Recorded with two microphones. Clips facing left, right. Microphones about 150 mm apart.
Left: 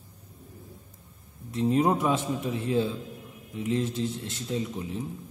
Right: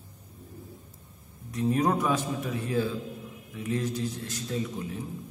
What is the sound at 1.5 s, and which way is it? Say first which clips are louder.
A man's voice: left 2 dB; 25° left (ahead or behind).